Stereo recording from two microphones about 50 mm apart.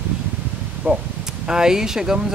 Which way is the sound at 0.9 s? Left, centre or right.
Right.